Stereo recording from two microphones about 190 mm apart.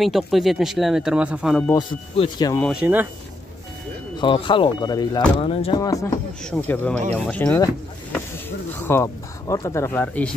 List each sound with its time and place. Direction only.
0.0 s speech: centre (ahead or behind)
1.8 s speech: 25° left (ahead or behind)
2.6 s speech: 5° right (ahead or behind)
4.2 s speech: 25° left (ahead or behind)
5.8 s speech: 15° left (ahead or behind)